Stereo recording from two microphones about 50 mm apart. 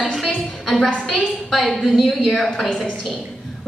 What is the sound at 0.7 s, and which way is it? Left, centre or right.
Speech, centre.